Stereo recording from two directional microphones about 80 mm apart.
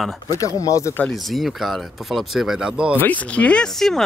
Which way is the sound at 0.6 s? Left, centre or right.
Left.